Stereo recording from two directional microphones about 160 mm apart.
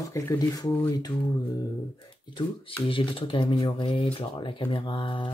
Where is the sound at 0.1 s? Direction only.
20° left (ahead or behind).